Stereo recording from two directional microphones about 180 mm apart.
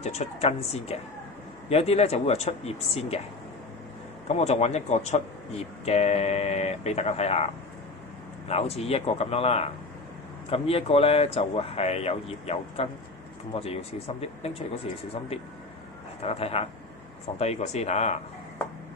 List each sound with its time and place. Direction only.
0.0 s speech: 35° left (ahead or behind)
4.4 s speech: 35° left (ahead or behind)
16.2 s speech: 35° left (ahead or behind)